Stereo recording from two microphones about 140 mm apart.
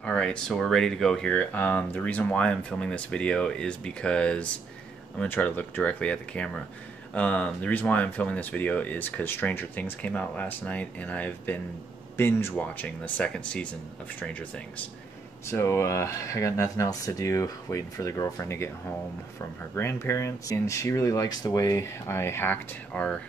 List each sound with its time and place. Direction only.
0.0 s speech: 5° left (ahead or behind)